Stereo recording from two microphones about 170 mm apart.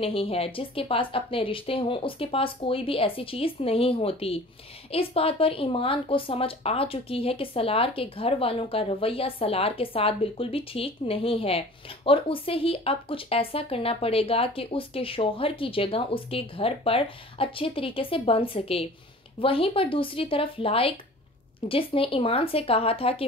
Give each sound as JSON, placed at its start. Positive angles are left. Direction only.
{"t": 0.0, "sound": "speech", "side_deg": 35}